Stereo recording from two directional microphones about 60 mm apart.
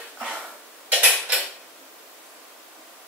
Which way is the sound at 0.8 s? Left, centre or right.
Right.